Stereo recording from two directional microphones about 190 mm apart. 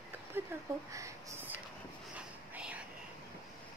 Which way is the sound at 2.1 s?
5° right (ahead or behind).